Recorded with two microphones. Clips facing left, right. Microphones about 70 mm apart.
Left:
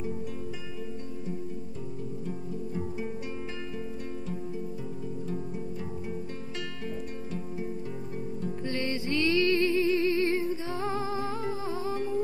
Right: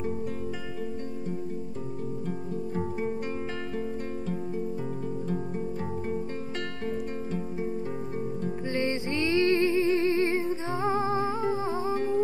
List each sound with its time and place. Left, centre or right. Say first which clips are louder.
2.2 s music: right 3 dB; right
8.6 s music: right 2 dB; right